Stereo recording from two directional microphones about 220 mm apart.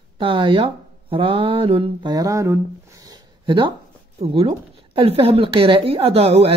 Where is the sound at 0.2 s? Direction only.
25° right (ahead or behind).